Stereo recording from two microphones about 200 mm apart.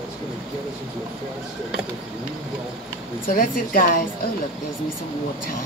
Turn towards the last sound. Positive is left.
turn(degrees=45)  # may be behind; listen again after turning